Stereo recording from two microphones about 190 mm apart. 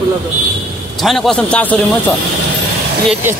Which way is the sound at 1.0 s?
Centre (ahead or behind).